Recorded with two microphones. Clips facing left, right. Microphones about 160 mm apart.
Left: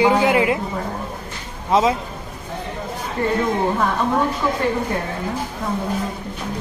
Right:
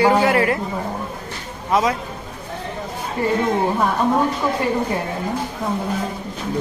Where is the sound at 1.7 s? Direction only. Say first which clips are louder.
Left 2 dB; 25° left (ahead or behind).